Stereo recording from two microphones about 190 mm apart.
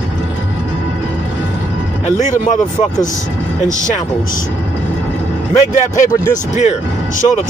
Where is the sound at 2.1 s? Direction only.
40° left (ahead or behind).